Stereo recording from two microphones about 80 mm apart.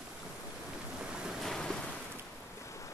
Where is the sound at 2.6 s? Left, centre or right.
Left.